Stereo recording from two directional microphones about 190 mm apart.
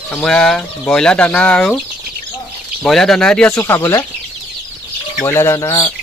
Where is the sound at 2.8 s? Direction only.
Centre (ahead or behind).